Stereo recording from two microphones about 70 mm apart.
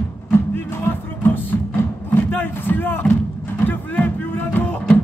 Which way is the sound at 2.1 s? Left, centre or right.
Left.